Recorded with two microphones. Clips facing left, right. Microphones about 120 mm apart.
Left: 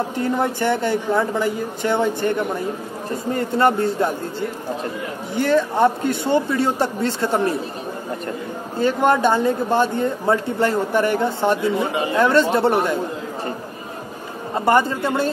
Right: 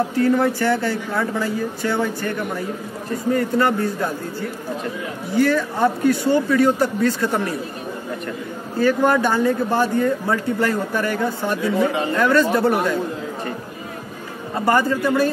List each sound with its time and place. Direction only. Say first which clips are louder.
0.1 s speech: right 4 dB; 20° left (ahead or behind)
8.7 s speech: right 1 dB; 25° left (ahead or behind)
14.5 s speech: left 1 dB; 25° left (ahead or behind)